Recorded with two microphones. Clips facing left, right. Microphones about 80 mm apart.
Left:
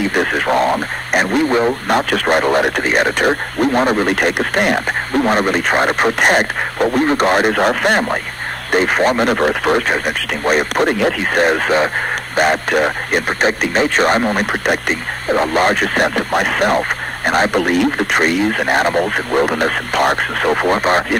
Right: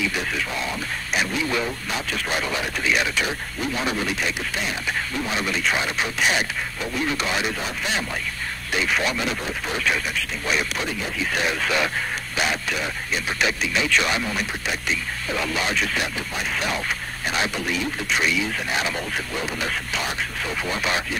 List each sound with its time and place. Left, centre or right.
0.0 s radio: left
1.5 s speech: left